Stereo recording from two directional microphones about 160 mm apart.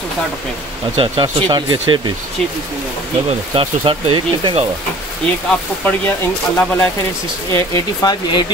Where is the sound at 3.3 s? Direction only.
35° right (ahead or behind).